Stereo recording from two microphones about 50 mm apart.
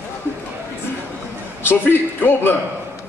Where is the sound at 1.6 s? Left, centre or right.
Left.